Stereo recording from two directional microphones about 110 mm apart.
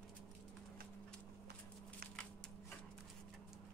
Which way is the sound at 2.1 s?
5° left (ahead or behind).